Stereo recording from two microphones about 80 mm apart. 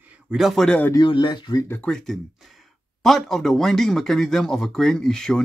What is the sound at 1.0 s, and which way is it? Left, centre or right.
Speech, left.